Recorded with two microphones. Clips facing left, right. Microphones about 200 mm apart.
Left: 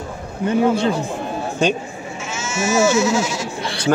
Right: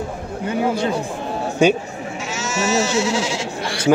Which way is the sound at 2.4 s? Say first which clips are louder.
Left 3 dB; 40° right (ahead or behind).